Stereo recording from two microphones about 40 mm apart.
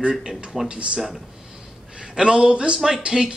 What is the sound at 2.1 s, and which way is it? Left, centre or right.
Speech, right.